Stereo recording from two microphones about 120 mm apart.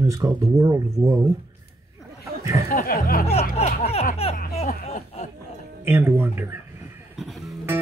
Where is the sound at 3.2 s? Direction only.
60° left (ahead or behind).